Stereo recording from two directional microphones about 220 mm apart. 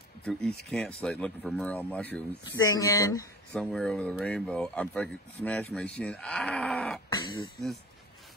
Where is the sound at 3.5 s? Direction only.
Centre (ahead or behind).